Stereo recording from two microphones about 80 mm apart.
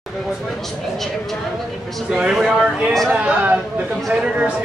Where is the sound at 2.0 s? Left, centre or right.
Centre.